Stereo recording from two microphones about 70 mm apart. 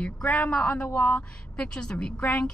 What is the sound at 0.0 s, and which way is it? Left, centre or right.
A woman's voice, centre.